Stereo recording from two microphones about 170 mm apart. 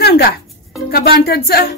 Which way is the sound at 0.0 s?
65° left (ahead or behind).